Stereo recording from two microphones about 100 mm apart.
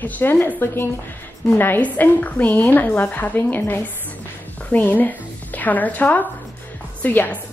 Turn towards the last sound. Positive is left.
turn(degrees=20)  # may be behind; listen again after turning